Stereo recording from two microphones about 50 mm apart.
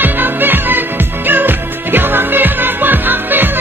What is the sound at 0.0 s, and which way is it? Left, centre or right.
Music, right.